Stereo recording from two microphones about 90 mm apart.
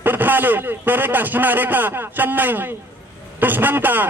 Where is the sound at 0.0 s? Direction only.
20° right (ahead or behind).